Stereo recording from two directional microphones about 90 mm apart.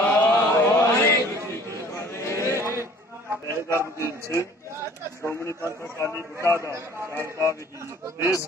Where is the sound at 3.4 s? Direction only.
35° left (ahead or behind).